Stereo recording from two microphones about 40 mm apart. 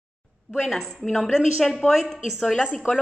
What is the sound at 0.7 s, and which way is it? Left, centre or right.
A woman's voice, centre.